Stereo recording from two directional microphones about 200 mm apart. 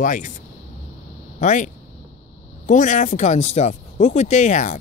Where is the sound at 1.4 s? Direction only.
40° left (ahead or behind).